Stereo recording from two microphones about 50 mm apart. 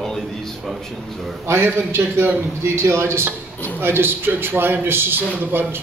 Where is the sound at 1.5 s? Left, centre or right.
Right.